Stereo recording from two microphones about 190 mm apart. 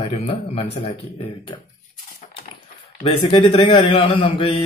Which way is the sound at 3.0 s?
30° left (ahead or behind).